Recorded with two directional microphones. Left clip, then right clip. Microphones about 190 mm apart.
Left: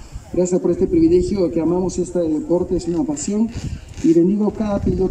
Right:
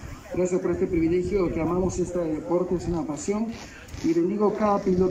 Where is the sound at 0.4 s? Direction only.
55° left (ahead or behind).